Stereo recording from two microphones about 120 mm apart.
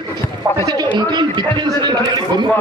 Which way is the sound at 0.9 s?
40° right (ahead or behind).